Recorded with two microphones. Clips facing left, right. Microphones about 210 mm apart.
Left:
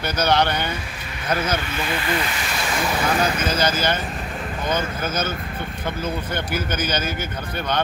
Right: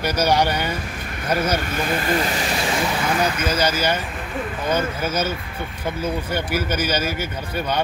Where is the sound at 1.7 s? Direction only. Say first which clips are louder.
Right 3 dB; 45° right (ahead or behind).